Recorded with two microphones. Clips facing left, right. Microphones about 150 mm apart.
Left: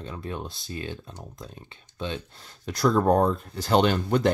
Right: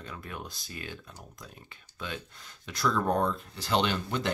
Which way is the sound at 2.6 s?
40° left (ahead or behind).